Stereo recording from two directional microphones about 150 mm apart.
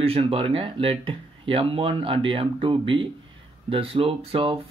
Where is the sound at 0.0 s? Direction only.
40° right (ahead or behind).